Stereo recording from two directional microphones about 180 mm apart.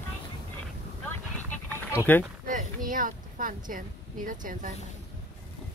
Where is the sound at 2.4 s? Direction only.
50° right (ahead or behind).